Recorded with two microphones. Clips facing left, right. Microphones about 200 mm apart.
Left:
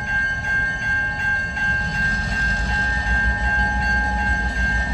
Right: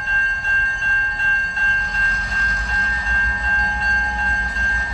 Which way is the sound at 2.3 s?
25° left (ahead or behind).